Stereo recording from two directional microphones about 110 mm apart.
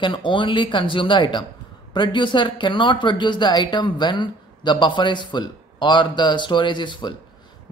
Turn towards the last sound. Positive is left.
turn(degrees=45)  # may be behind; listen again after turning